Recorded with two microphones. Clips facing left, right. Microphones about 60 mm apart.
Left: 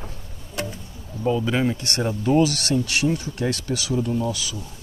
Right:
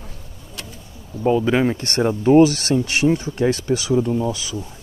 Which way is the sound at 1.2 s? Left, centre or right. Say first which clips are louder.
Right 5 dB; right.